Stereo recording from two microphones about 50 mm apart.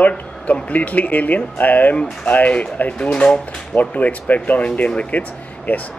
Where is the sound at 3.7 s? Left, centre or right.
Left.